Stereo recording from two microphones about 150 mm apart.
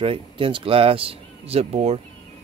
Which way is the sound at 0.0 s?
35° right (ahead or behind).